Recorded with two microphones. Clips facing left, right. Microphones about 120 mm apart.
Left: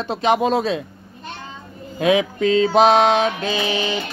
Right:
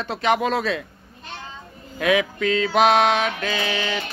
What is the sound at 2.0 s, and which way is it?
Speech, 25° left (ahead or behind).